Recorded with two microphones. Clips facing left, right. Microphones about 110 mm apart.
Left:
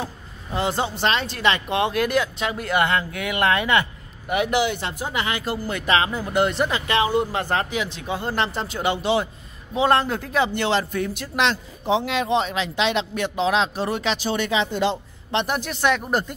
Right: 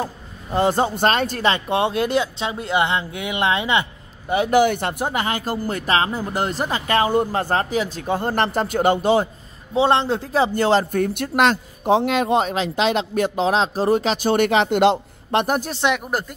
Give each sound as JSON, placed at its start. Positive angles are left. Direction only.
{"t": 0.0, "sound": "speech", "side_deg": -40}
{"t": 1.5, "sound": "speech", "side_deg": -30}
{"t": 4.5, "sound": "speech", "side_deg": -45}
{"t": 9.8, "sound": "speech", "side_deg": -25}
{"t": 15.3, "sound": "a woman's voice", "side_deg": -40}
{"t": 16.1, "sound": "speech", "side_deg": 0}